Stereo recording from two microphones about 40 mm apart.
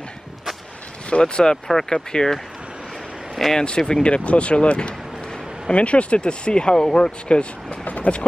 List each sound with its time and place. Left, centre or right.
1.1 s speech: left
3.5 s speech: left